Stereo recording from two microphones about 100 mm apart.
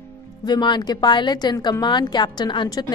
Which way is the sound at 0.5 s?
50° left (ahead or behind).